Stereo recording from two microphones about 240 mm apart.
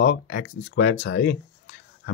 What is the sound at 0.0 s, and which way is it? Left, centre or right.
Speech, left.